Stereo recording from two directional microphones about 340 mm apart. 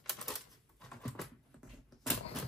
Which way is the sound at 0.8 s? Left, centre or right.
Centre.